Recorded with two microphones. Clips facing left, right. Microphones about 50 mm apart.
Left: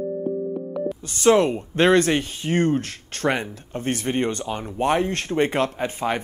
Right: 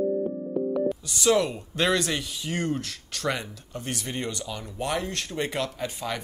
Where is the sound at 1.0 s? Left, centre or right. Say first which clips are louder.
Left 8 dB; left.